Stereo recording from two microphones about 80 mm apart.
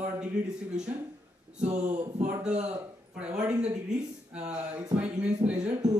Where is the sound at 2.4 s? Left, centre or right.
Centre.